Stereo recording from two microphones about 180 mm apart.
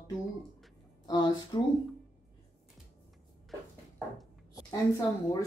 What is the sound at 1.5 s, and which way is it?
Speech, 25° left (ahead or behind).